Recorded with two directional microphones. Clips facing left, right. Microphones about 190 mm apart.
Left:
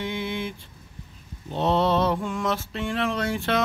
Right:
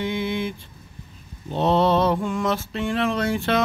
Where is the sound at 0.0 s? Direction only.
15° right (ahead or behind).